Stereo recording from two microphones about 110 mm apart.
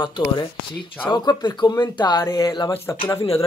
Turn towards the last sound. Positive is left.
turn(degrees=25)  # may be behind; listen again after turning